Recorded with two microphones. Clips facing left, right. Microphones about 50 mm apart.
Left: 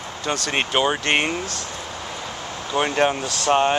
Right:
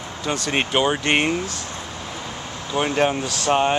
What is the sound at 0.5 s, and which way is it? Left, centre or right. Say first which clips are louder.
Speech: right 1 dB; centre.